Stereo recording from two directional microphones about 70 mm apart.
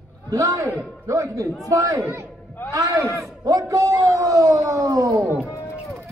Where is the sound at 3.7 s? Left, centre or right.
Right.